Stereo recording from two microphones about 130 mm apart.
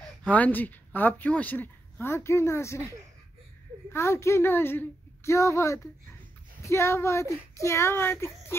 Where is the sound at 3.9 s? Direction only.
20° left (ahead or behind).